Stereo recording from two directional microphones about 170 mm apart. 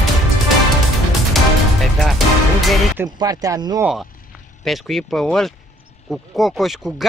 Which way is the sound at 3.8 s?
Centre (ahead or behind).